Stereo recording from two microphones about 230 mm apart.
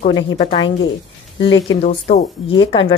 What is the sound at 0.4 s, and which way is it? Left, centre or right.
A woman's voice, left.